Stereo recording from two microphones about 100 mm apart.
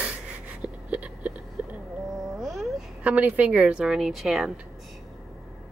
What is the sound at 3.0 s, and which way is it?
Speech, 15° right (ahead or behind).